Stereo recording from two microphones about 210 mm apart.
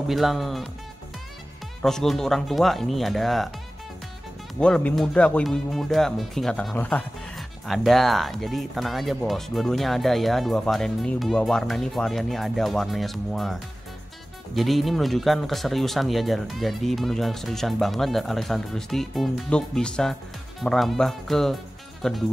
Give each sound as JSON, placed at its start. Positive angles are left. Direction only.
{"t": 0.1, "sound": "speech", "side_deg": 0}
{"t": 1.8, "sound": "speech", "side_deg": 0}
{"t": 4.6, "sound": "speech", "side_deg": 5}